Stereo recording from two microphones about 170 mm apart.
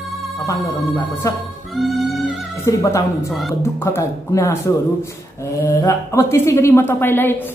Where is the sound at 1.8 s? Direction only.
Centre (ahead or behind).